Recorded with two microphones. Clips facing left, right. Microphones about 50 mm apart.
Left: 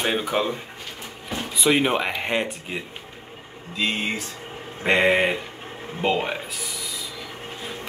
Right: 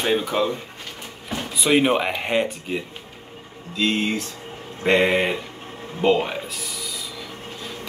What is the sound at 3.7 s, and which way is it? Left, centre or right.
Speech, centre.